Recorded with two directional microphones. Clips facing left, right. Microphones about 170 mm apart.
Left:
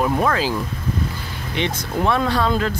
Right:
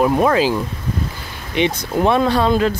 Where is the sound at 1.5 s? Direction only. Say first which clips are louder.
Right 5 dB; 20° right (ahead or behind).